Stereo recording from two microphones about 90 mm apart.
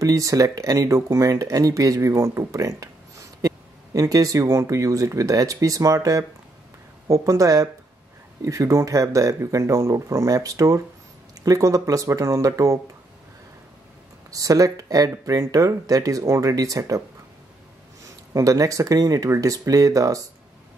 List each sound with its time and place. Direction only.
0.0 s speech: 40° right (ahead or behind)
14.3 s speech: 40° right (ahead or behind)
18.0 s speech: 35° right (ahead or behind)